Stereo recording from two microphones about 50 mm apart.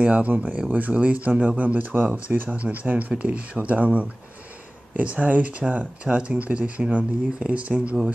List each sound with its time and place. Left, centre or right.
0.0 s speech: right